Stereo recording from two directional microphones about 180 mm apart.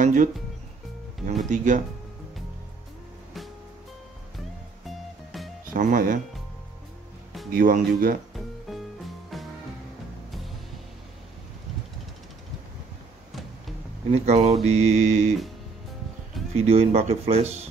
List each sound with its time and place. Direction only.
0.0 s music: 45° right (ahead or behind)
1.5 s speech: 45° right (ahead or behind)
4.8 s music: centre (ahead or behind)
5.7 s speech: 50° right (ahead or behind)
7.5 s speech: 50° right (ahead or behind)
8.6 s music: centre (ahead or behind)
13.3 s music: centre (ahead or behind)
14.1 s mantra: 35° right (ahead or behind)
16.5 s mantra: 35° right (ahead or behind)